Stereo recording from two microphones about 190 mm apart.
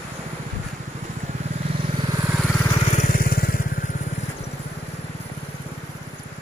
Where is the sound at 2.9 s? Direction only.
45° left (ahead or behind).